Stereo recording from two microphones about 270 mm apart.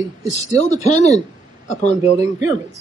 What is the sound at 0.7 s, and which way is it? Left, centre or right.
Speech, left.